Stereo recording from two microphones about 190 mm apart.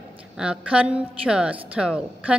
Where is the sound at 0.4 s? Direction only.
5° right (ahead or behind).